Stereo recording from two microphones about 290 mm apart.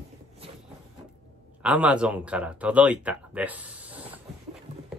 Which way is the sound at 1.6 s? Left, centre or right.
Centre.